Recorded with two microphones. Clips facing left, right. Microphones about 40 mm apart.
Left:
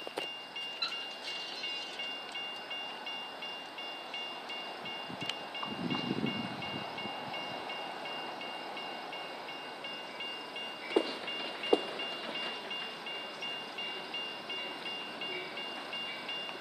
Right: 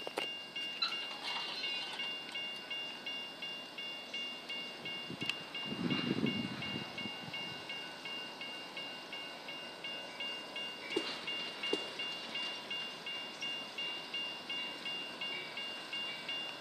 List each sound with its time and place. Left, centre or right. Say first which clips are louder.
10.9 s train: left 8 dB; left
11.6 s rain: left 9 dB; centre